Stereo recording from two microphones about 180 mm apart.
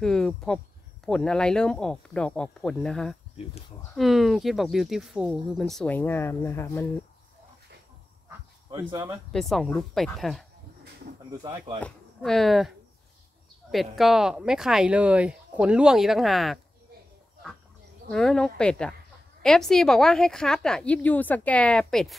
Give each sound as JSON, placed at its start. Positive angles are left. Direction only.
{"t": 0.0, "sound": "speech", "side_deg": 5}
{"t": 8.3, "sound": "dog", "side_deg": -15}
{"t": 9.3, "sound": "speech", "side_deg": 0}
{"t": 12.2, "sound": "speech", "side_deg": 0}
{"t": 18.1, "sound": "speech", "side_deg": 5}